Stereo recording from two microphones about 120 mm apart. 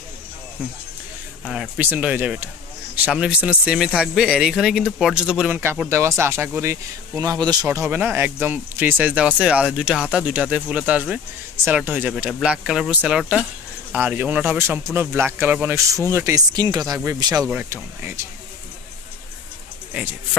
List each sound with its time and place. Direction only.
1.5 s speech: 10° right (ahead or behind)
5.6 s speech: 20° right (ahead or behind)
7.6 s speech: 20° right (ahead or behind)
15.7 s speech: 25° right (ahead or behind)
16.5 s speech: 35° right (ahead or behind)
19.9 s speech: 10° right (ahead or behind)